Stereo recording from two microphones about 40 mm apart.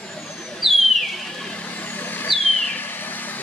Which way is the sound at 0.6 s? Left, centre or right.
Centre.